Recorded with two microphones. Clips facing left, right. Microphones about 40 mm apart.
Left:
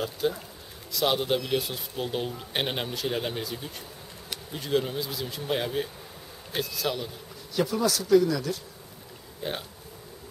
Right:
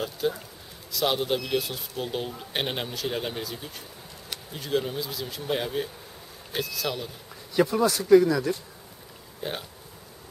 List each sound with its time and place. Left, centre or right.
0.0 s a man's voice: centre
7.8 s speech: centre
9.4 s a man's voice: centre